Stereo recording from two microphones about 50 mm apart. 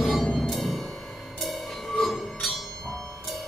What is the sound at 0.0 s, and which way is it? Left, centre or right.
Music, centre.